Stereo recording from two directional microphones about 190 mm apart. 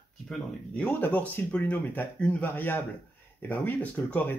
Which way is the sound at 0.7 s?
5° left (ahead or behind).